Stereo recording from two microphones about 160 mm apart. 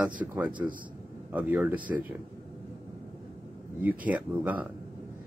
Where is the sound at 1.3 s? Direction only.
10° right (ahead or behind).